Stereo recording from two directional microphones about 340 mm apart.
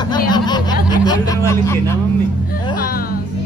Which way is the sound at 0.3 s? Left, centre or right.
Centre.